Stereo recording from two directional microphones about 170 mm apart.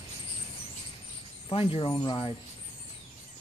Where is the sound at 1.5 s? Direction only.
35° left (ahead or behind).